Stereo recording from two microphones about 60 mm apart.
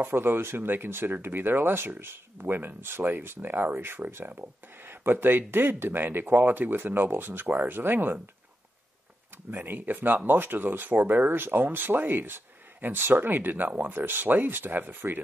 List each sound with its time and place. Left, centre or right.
0.0 s speech: right
9.5 s speech: right